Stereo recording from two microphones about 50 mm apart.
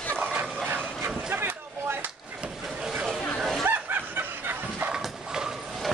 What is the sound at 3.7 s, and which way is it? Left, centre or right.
Bow-wow, right.